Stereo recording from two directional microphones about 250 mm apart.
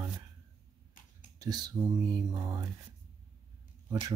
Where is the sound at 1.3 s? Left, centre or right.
Centre.